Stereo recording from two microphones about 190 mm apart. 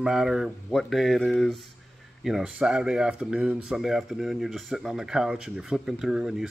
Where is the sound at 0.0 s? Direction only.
5° right (ahead or behind).